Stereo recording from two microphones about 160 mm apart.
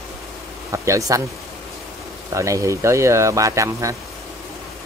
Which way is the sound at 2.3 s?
20° right (ahead or behind).